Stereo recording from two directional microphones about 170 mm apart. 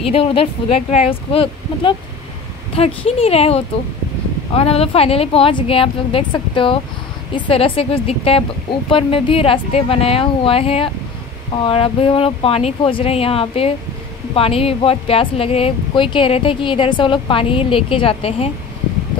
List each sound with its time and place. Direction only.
0.0 s speech: 35° left (ahead or behind)